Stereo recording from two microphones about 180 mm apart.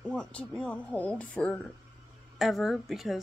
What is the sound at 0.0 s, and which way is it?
Speech, 5° left (ahead or behind).